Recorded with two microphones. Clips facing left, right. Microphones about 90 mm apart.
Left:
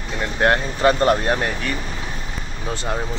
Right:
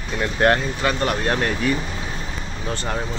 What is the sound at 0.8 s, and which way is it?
Speech, 30° left (ahead or behind).